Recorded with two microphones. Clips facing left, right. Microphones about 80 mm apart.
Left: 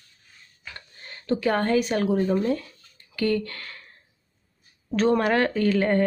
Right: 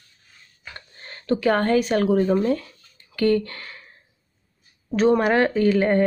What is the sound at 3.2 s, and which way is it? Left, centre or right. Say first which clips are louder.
Speech: right 4 dB; right.